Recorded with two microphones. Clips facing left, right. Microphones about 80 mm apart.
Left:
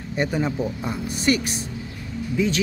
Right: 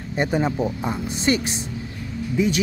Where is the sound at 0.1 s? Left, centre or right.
Right.